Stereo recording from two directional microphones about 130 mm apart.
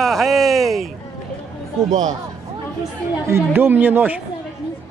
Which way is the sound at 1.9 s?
75° right (ahead or behind).